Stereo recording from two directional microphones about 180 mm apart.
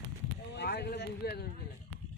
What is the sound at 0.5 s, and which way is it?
Speech, 65° left (ahead or behind).